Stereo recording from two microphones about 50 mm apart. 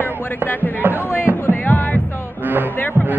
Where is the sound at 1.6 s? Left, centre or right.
Left.